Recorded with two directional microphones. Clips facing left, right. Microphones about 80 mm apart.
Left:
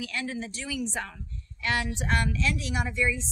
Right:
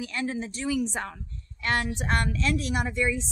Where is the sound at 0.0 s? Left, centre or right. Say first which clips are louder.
Right 3 dB; right.